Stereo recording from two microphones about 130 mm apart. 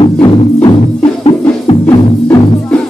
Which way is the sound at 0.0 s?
40° left (ahead or behind).